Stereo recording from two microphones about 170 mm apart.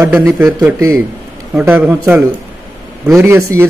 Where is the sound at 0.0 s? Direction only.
20° right (ahead or behind).